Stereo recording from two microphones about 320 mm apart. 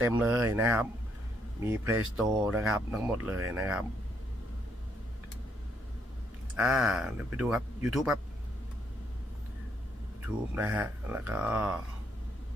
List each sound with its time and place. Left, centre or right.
0.1 s speech: centre
2.1 s speech: centre
6.5 s speech: centre
10.2 s speech: centre